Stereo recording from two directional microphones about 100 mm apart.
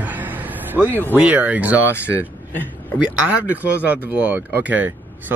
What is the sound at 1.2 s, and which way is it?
Speech, 15° right (ahead or behind).